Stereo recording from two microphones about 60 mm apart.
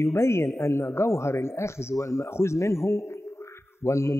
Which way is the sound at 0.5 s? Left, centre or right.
Left.